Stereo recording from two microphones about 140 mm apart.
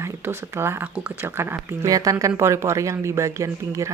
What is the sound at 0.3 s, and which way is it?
Speech, 20° right (ahead or behind).